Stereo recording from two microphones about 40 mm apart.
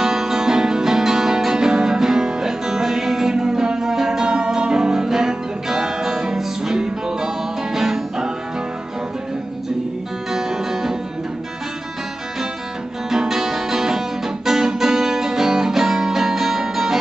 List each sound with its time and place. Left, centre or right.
0.0 s music: centre
10.3 s music: centre
13.1 s music: centre